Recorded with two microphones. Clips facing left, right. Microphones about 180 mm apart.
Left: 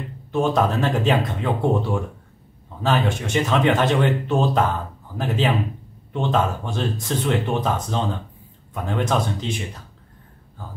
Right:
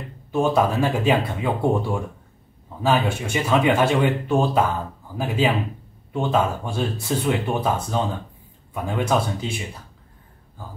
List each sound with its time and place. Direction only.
0.3 s speech: 10° right (ahead or behind)